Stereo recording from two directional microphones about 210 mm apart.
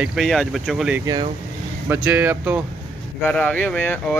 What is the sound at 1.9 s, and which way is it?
Speech, 10° right (ahead or behind).